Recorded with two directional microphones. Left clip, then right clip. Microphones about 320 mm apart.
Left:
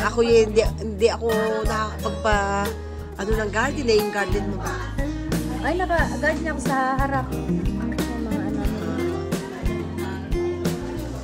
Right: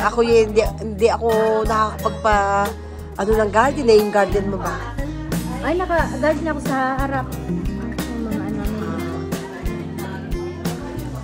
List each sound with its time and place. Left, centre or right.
0.0 s speech: centre
5.7 s a woman's voice: centre
8.8 s music: centre